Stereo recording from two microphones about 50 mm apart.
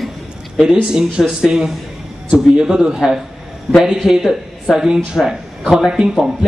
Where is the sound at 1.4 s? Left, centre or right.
Centre.